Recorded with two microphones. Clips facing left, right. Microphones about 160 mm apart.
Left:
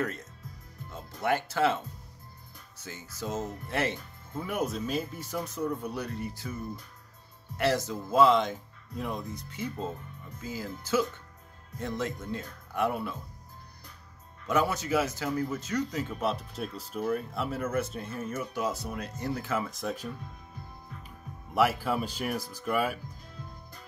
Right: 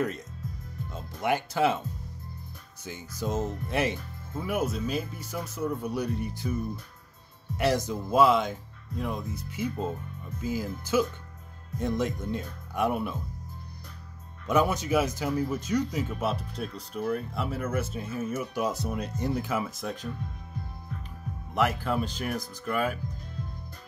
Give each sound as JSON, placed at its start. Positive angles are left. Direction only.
{"t": 0.9, "sound": "speech", "side_deg": -15}
{"t": 2.8, "sound": "speech", "side_deg": -15}
{"t": 4.4, "sound": "speech", "side_deg": -5}
{"t": 7.5, "sound": "speech", "side_deg": -15}
{"t": 14.5, "sound": "speech", "side_deg": -15}
{"t": 19.7, "sound": "speech", "side_deg": 0}
{"t": 21.5, "sound": "speech", "side_deg": 5}